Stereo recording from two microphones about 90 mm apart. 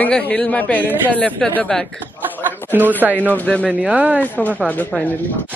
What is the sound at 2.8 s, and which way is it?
Speech, 20° right (ahead or behind).